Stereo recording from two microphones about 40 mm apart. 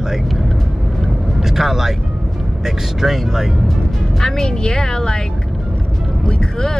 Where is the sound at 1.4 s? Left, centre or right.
Centre.